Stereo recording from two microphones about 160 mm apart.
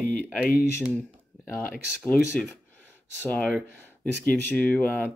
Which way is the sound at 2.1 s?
65° left (ahead or behind).